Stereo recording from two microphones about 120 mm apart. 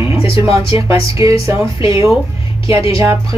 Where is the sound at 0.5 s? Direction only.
25° right (ahead or behind).